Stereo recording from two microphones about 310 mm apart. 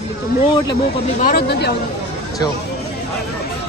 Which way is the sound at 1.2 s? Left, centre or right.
Left.